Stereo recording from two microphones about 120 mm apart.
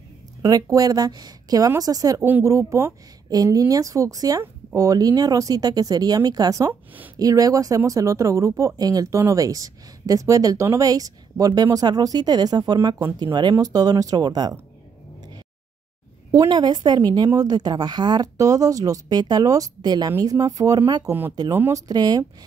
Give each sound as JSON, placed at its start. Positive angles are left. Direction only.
{"t": 0.4, "sound": "a woman's voice", "side_deg": -30}
{"t": 16.3, "sound": "a woman's voice", "side_deg": -40}
{"t": 21.8, "sound": "a woman's voice", "side_deg": -35}